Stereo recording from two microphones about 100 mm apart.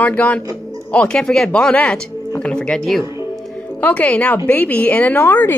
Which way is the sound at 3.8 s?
15° left (ahead or behind).